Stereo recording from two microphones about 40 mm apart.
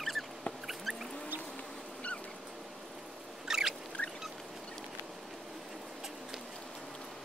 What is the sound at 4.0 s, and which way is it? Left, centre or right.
Fowl, left.